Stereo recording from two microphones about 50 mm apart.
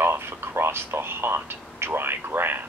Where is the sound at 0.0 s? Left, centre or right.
Right.